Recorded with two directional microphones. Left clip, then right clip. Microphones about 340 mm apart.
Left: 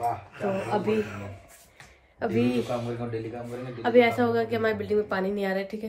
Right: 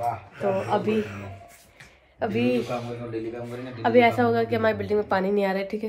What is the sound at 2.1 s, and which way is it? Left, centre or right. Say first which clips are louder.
A woman's voice: right 2 dB; centre.